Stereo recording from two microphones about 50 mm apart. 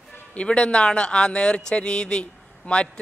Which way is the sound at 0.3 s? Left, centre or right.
Left.